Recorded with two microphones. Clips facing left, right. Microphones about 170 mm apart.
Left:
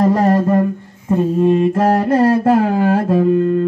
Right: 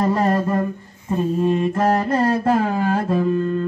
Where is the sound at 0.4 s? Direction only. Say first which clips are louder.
Left 6 dB; 55° left (ahead or behind).